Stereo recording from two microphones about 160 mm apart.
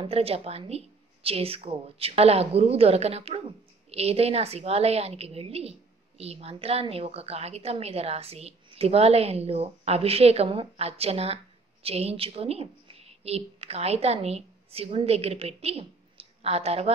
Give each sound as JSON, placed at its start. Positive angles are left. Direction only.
{"t": 0.0, "sound": "a woman's voice", "side_deg": -40}